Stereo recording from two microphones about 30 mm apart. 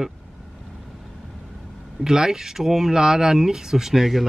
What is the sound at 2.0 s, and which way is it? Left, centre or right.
Speech, centre.